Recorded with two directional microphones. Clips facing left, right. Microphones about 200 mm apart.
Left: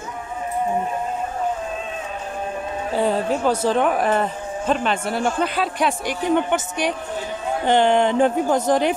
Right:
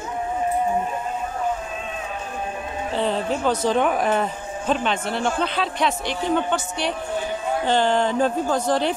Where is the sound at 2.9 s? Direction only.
10° left (ahead or behind).